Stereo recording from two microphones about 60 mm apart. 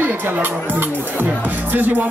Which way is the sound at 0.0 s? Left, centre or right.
Right.